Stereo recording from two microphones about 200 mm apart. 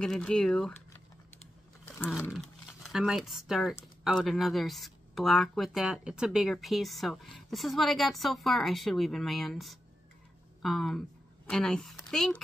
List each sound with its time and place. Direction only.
0.0 s speech: 5° left (ahead or behind)
2.3 s a woman's voice: centre (ahead or behind)